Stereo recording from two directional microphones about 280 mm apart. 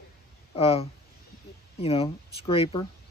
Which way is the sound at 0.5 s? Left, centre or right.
Left.